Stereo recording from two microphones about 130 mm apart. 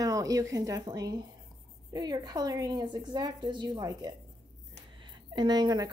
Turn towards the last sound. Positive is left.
turn(degrees=-30)  # may be behind; listen again after turning